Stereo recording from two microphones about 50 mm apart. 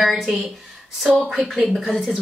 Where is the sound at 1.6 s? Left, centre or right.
Centre.